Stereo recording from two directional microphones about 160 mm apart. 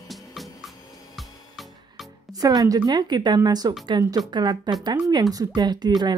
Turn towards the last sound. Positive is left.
turn(degrees=-25)  # may be behind; listen again after turning